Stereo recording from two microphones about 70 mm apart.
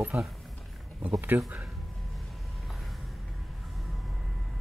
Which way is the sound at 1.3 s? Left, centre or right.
Right.